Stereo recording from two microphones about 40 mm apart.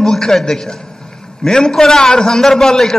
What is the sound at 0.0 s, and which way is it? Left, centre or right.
A man's voice, centre.